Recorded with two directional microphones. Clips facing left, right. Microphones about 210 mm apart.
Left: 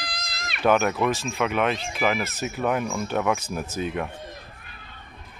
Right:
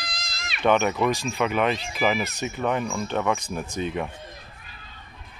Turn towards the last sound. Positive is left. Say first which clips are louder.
# even
turn(degrees=5)  # may be behind; listen again after turning